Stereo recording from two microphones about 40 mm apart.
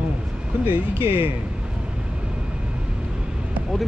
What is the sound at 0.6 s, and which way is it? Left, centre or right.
Speech, right.